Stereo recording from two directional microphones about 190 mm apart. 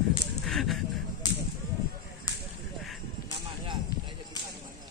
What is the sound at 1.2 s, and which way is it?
Whip, 20° left (ahead or behind).